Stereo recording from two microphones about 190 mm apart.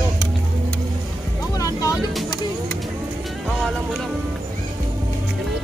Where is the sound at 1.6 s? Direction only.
20° left (ahead or behind).